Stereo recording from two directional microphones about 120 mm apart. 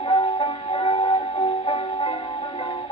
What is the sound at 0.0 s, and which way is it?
Music, 50° left (ahead or behind).